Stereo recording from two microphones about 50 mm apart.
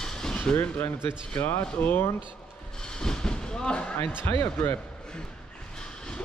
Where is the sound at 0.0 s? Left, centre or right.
Centre.